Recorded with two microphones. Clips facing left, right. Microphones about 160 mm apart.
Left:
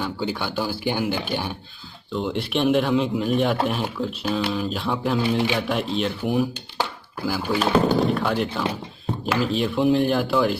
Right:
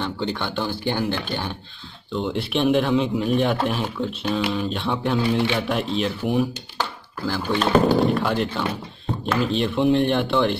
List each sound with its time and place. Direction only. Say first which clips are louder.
0.0 s speech: even; 10° left (ahead or behind)
2.1 s speech: even; centre (ahead or behind)